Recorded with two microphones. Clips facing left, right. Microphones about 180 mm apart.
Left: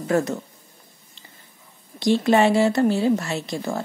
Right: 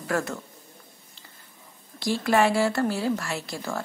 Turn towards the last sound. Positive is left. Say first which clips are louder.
# left 5 dB
turn(degrees=20)  # may be behind; listen again after turning